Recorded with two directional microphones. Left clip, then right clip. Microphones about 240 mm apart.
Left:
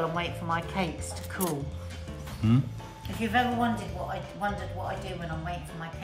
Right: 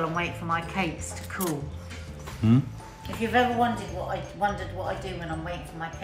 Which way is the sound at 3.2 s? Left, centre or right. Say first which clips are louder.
Right 3 dB; left.